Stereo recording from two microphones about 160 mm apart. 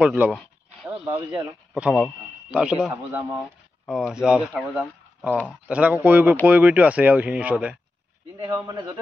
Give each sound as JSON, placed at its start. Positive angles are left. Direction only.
{"t": 0.0, "sound": "speech", "side_deg": -5}
{"t": 1.8, "sound": "a man's voice", "side_deg": -5}
{"t": 8.5, "sound": "speech", "side_deg": -20}